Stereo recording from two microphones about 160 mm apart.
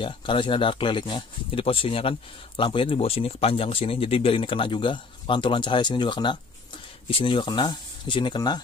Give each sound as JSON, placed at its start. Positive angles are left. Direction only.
{"t": 0.0, "sound": "speech", "side_deg": 30}